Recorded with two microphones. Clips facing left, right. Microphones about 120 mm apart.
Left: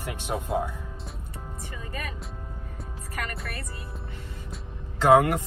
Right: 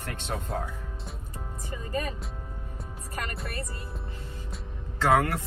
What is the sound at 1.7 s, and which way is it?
Speech, 30° right (ahead or behind).